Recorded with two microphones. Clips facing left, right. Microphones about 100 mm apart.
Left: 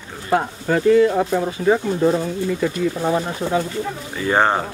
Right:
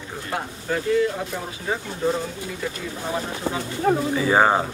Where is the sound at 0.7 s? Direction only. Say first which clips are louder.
Left 7 dB; 80° left.